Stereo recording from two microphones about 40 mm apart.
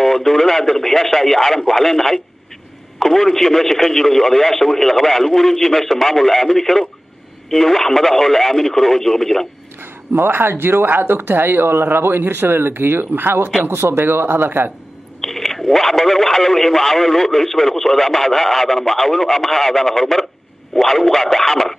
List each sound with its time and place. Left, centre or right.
0.0 s speech: centre
9.8 s speech: right
13.7 s speech: right
15.1 s speech: centre